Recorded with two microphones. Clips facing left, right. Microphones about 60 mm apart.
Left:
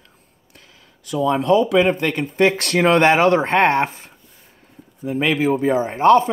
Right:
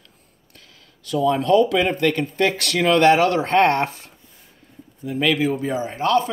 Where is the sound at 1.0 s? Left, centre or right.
Centre.